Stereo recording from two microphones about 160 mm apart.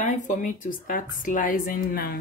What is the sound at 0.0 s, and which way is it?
Speech, 50° left (ahead or behind).